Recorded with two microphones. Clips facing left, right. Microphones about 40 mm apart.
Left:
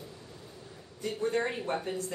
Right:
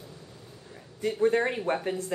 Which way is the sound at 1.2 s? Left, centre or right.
Right.